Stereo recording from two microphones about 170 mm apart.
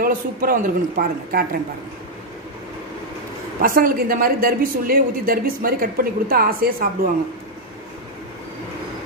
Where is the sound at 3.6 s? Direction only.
55° right (ahead or behind).